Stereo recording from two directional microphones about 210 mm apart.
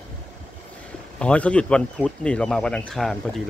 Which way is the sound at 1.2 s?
5° left (ahead or behind).